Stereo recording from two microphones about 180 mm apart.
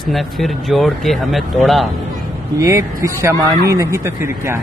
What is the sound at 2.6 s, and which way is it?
Speech, 15° right (ahead or behind).